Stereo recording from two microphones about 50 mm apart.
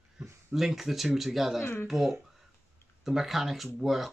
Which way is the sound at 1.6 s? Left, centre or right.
Left.